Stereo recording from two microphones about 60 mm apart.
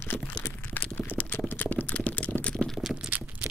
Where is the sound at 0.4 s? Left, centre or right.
Left.